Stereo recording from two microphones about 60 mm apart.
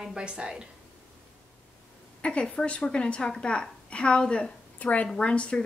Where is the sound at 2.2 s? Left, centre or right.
Centre.